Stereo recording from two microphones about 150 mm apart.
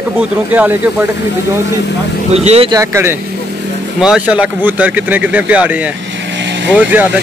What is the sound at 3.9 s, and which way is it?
Speech, 5° right (ahead or behind).